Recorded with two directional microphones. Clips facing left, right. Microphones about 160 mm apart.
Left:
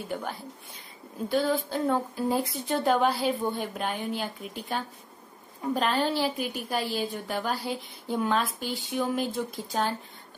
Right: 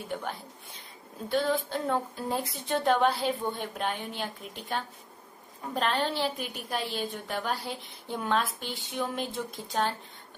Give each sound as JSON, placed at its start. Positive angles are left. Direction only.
{"t": 0.1, "sound": "a woman's voice", "side_deg": 0}
{"t": 1.3, "sound": "a woman's voice", "side_deg": 0}
{"t": 5.8, "sound": "a woman's voice", "side_deg": 5}